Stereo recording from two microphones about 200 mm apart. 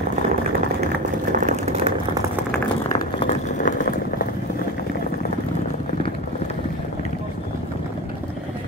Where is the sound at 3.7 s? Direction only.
45° left (ahead or behind).